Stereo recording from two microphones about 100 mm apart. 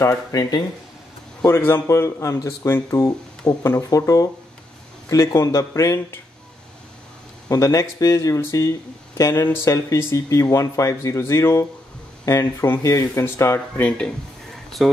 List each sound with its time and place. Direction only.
0.3 s speech: 40° left (ahead or behind)
1.4 s speech: 25° left (ahead or behind)
7.4 s speech: 35° left (ahead or behind)
13.7 s a sound: 10° left (ahead or behind)